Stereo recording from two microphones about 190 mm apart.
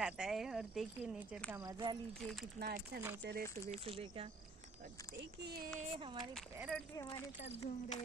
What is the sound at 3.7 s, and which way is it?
Speech, 30° right (ahead or behind).